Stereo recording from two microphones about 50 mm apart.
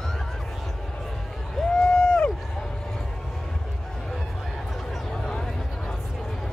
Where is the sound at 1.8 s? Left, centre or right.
Centre.